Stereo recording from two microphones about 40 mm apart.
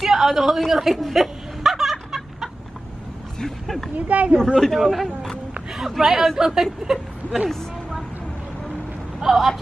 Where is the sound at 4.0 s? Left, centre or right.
Right.